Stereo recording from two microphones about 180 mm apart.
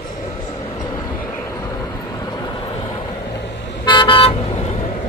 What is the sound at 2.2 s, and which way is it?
Vehicle, 20° left (ahead or behind).